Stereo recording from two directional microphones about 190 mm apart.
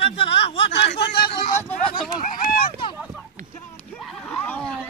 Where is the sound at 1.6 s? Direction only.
5° left (ahead or behind).